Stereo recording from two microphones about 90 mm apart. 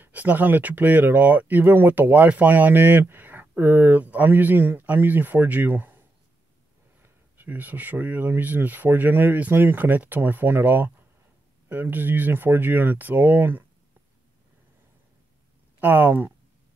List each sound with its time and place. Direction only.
0.0 s speech: 15° right (ahead or behind)
15.8 s speech: 20° right (ahead or behind)